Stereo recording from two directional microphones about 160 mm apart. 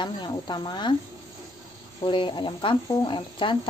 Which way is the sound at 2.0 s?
30° left (ahead or behind).